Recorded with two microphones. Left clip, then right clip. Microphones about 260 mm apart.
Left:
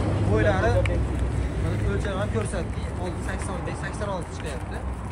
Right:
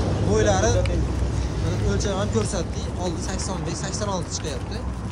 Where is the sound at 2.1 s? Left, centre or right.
Centre.